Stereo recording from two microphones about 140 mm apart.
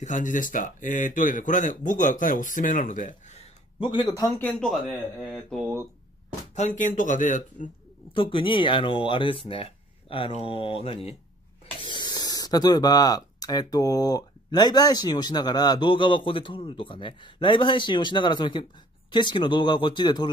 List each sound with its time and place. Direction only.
0.0 s speech: 65° left (ahead or behind)
4.5 s speech: 5° left (ahead or behind)
6.5 s speech: 60° left (ahead or behind)
8.1 s speech: 35° left (ahead or behind)
11.8 s speech: 30° left (ahead or behind)